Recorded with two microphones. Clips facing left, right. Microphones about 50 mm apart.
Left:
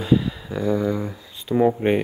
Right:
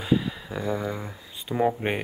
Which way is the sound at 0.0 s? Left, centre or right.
Centre.